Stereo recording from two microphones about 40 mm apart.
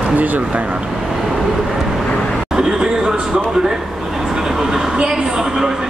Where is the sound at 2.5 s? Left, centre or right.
Centre.